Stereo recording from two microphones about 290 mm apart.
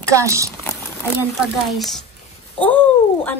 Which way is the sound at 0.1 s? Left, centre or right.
Centre.